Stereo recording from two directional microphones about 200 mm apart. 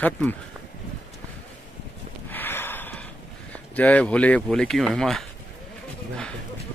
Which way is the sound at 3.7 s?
5° left (ahead or behind).